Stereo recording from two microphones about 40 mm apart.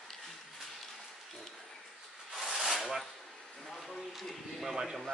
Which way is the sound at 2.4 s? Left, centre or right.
Centre.